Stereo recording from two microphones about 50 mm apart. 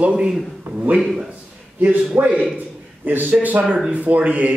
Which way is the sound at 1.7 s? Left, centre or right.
Right.